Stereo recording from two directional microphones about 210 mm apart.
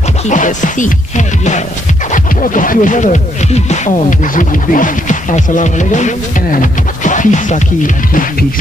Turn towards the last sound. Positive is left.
turn(degrees=35)  # may be behind; listen again after turning